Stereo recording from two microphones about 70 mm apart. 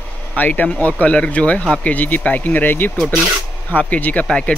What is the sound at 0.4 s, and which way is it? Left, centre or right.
Speech, left.